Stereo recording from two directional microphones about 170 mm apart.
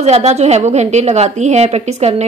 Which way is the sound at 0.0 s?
40° right (ahead or behind).